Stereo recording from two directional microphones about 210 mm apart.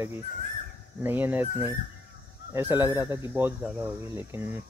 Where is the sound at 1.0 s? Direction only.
10° right (ahead or behind).